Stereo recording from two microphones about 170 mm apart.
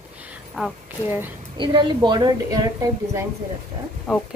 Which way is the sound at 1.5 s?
30° right (ahead or behind).